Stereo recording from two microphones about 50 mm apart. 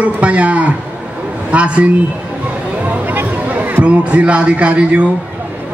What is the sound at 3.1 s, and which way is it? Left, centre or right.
Music, right.